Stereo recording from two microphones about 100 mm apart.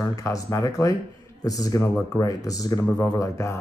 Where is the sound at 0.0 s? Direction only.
35° left (ahead or behind).